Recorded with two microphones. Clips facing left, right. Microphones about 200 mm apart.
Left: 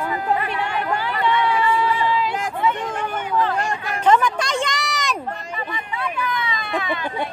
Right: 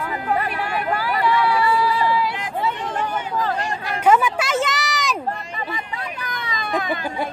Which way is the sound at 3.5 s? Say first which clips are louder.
Left 2 dB; 50° left (ahead or behind).